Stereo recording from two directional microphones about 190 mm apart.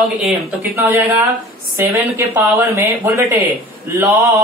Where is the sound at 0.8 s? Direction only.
15° right (ahead or behind).